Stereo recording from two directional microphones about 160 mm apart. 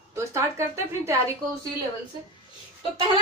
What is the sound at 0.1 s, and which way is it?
A woman's voice, 20° right (ahead or behind).